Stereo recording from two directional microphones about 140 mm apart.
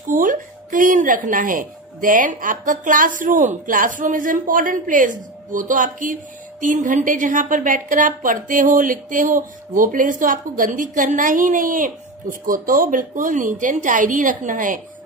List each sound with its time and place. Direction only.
0.0 s a woman's voice: 70° right (ahead or behind)